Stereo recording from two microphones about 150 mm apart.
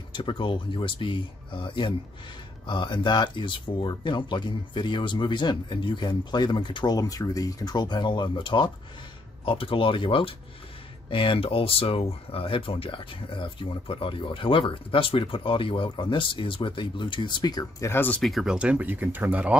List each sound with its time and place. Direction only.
0.1 s speech: 30° left (ahead or behind); by 18.2 s 15° left (ahead or behind)
18.2 s speech: centre (ahead or behind)